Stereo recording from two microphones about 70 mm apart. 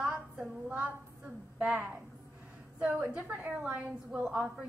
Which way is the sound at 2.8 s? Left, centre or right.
Centre.